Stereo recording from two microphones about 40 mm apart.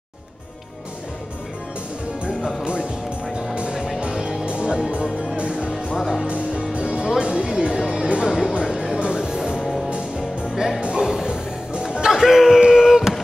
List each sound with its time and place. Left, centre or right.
2.6 s music: right
3.7 s music: centre
4.5 s music: right
5.9 s music: centre
6.2 s music: right
7.6 s a sound: centre
8.6 s music: centre
9.6 s music: centre
11.0 s music: centre
12.1 s a sound: centre